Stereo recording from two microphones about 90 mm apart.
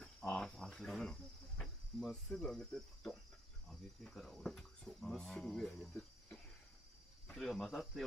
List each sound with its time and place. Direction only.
0.0 s cricket: 5° left (ahead or behind)
3.6 s speech: 5° left (ahead or behind)
7.3 s cricket: 5° left (ahead or behind)